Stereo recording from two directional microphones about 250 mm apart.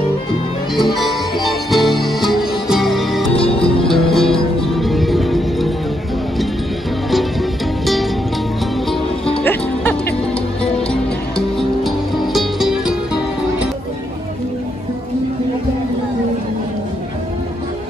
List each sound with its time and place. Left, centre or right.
0.7 s music: centre
3.3 s music: left
3.8 s music: centre
7.8 s music: centre
9.4 s music: centre